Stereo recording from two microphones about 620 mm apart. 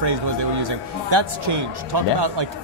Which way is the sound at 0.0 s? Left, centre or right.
Right.